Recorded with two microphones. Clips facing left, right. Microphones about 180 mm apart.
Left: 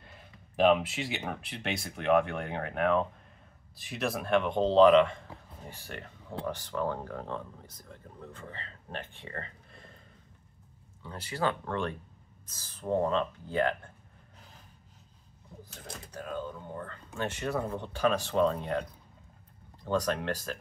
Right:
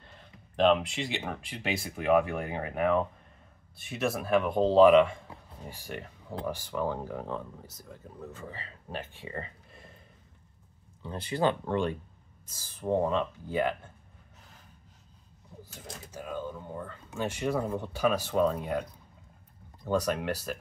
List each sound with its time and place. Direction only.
0.0 s speech: 10° left (ahead or behind); by 9.8 s 10° right (ahead or behind)
11.0 s speech: 20° right (ahead or behind)
15.7 s speech: 10° right (ahead or behind)
20.1 s speech: 10° right (ahead or behind)